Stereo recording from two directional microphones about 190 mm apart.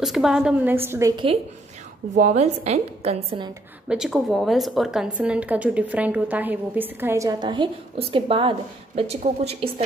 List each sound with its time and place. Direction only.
0.0 s a woman's voice: centre (ahead or behind)
2.1 s a woman's voice: 40° right (ahead or behind)
3.9 s a woman's voice: 5° right (ahead or behind); by 9.8 s 35° right (ahead or behind)